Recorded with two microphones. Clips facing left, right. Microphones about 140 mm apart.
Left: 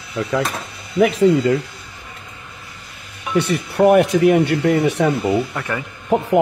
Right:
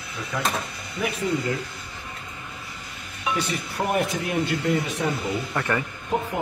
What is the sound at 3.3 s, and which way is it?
Speech, 65° left (ahead or behind).